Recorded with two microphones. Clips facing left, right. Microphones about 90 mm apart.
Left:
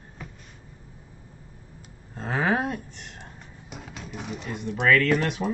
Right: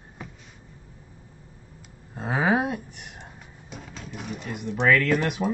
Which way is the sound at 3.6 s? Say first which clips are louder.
Even; 5° left (ahead or behind).